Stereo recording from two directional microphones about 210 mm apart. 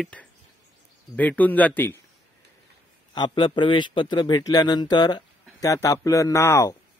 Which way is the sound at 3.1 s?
20° left (ahead or behind).